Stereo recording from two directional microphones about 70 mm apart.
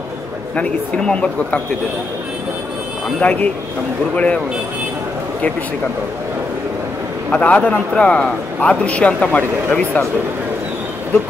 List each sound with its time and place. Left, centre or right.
0.6 s a man's voice: centre
3.2 s a man's voice: left
7.2 s a man's voice: centre